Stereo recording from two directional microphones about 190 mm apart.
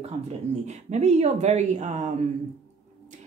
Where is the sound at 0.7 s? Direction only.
35° right (ahead or behind).